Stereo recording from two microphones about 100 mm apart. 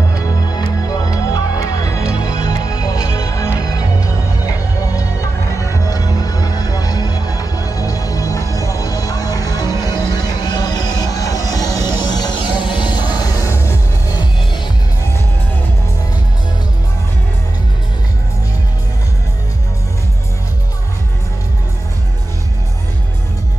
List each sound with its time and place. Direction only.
0.8 s music: 40° left (ahead or behind)